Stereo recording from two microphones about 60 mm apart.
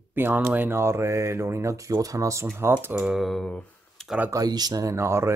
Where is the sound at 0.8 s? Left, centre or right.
Right.